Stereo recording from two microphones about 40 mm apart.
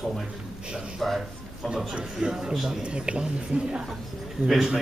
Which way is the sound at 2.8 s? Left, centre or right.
Right.